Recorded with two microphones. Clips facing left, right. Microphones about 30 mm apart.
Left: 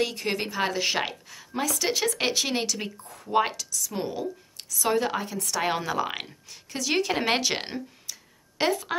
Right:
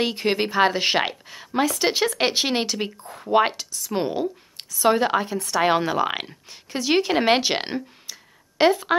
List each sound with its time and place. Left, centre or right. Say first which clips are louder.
0.0 s a woman's voice: right 5 dB; right